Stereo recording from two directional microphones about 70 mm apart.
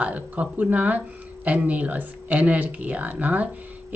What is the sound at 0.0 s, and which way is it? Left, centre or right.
Speech, right.